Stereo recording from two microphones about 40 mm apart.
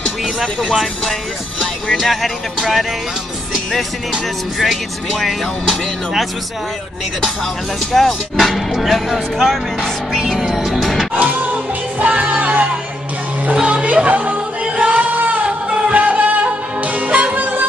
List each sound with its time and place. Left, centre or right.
0.2 s speech: centre
2.0 s speech: centre
5.2 s speech: centre
7.9 s speech: centre
10.4 s music: centre
11.1 s music: right
13.6 s speech: right
13.9 s singing: right
17.4 s music: right